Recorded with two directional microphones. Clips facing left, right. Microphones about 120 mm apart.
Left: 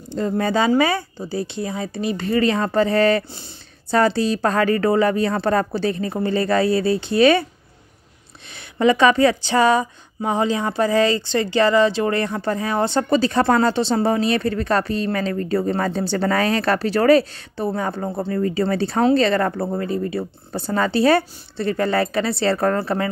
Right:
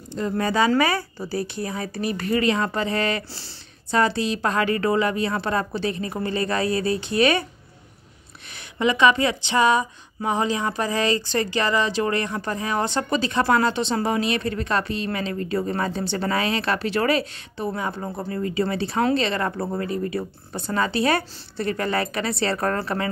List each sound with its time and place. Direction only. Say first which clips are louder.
0.1 s a woman's voice: left 3 dB; 30° left (ahead or behind)
8.5 s speech: left 5 dB; 40° left (ahead or behind)
19.6 s speech: left 3 dB; 30° left (ahead or behind)